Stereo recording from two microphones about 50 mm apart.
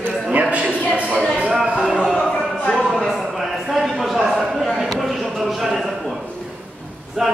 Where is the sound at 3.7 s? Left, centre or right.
Centre.